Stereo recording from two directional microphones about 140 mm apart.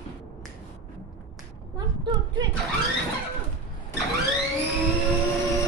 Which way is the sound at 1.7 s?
35° right (ahead or behind).